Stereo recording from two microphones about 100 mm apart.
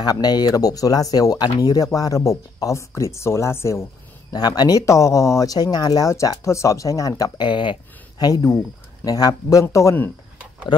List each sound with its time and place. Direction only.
0.0 s speech: 40° left (ahead or behind)
4.3 s speech: 40° left (ahead or behind)
8.2 s speech: 40° left (ahead or behind)